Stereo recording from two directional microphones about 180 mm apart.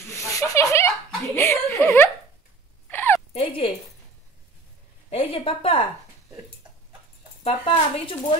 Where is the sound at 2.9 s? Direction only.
10° left (ahead or behind).